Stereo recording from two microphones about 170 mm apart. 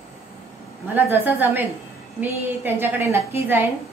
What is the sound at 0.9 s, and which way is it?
A woman's voice, 10° right (ahead or behind).